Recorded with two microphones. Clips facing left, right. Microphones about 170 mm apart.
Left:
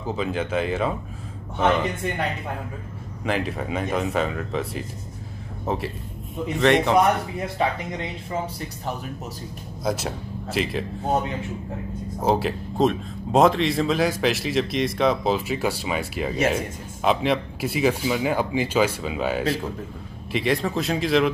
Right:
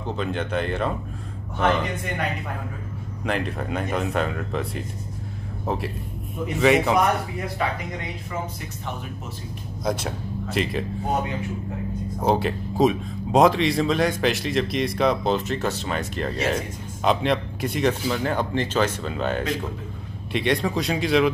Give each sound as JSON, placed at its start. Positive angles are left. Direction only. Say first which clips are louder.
{"t": 0.0, "sound": "a man's voice", "louder": "left 1 dB", "side_deg": 5}
{"t": 3.3, "sound": "a man's voice", "louder": "left 1 dB", "side_deg": 0}
{"t": 7.6, "sound": "speech", "louder": "left 4 dB", "side_deg": 25}
{"t": 9.8, "sound": "a man's voice", "louder": "even", "side_deg": 0}
{"t": 12.2, "sound": "a man's voice", "louder": "even", "side_deg": 0}